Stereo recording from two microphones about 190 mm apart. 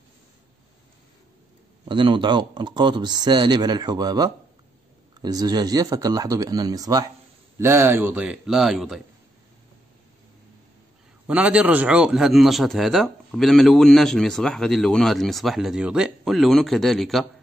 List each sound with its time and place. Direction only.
1.9 s a man's voice: 25° right (ahead or behind); by 9.0 s centre (ahead or behind)
11.2 s a man's voice: 5° right (ahead or behind)